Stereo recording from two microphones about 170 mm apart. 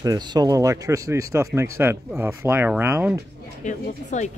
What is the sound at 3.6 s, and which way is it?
Speech, 45° left (ahead or behind).